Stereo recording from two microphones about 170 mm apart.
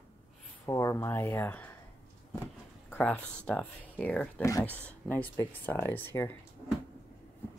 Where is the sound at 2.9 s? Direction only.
5° left (ahead or behind).